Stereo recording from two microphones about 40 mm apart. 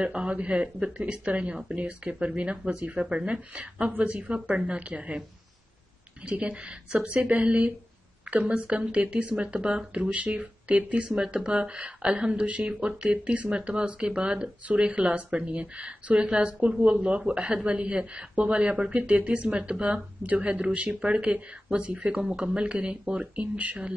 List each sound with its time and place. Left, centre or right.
0.0 s a man's voice: right
6.2 s a man's voice: right
10.0 s a man's voice: right